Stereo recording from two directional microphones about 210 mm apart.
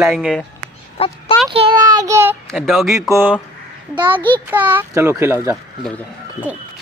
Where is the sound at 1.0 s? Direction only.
25° left (ahead or behind).